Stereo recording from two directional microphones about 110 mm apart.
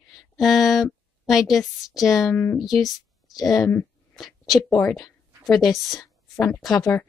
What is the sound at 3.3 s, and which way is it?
Speech, 35° left (ahead or behind).